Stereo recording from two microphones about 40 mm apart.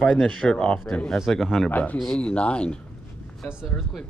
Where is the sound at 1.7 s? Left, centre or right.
Left.